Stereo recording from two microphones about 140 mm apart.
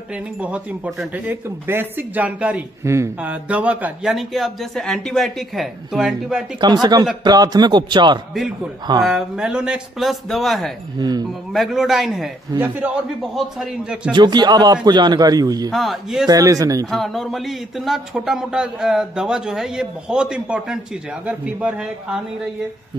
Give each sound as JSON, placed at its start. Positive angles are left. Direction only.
{"t": 0.1, "sound": "a man's voice", "side_deg": -10}
{"t": 6.6, "sound": "a man's voice", "side_deg": -30}
{"t": 9.0, "sound": "a man's voice", "side_deg": -5}
{"t": 11.0, "sound": "a man's voice", "side_deg": -30}
{"t": 11.5, "sound": "a man's voice", "side_deg": 0}
{"t": 12.5, "sound": "a man's voice", "side_deg": -15}
{"t": 14.1, "sound": "a man's voice", "side_deg": -30}
{"t": 15.7, "sound": "a man's voice", "side_deg": 0}
{"t": 16.3, "sound": "a man's voice", "side_deg": -25}
{"t": 16.9, "sound": "a man's voice", "side_deg": 0}